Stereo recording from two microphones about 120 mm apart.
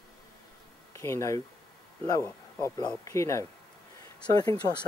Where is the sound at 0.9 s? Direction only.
25° left (ahead or behind).